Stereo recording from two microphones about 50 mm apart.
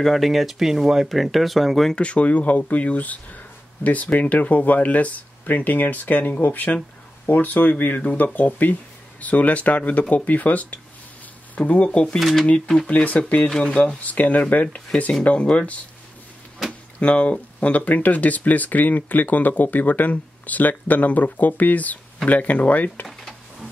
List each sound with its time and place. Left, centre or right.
0.0 s speech: centre
2.0 s speech: left
12.2 s speech: centre
12.8 s speech: left
13.6 s speech: centre
17.0 s speech: left